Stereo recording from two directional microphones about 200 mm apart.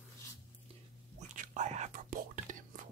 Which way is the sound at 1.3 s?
40° right (ahead or behind).